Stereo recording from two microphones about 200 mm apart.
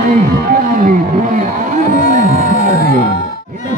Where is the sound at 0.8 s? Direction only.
40° right (ahead or behind).